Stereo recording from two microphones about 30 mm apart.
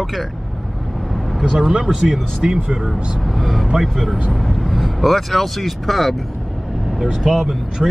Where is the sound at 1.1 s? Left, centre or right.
Centre.